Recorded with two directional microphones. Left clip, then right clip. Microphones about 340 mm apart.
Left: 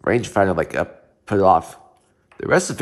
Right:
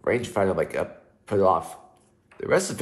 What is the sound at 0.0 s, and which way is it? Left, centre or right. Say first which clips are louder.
A man's voice: left 6 dB; left.